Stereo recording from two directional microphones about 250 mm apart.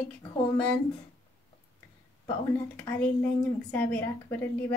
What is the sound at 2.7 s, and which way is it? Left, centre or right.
Speech, centre.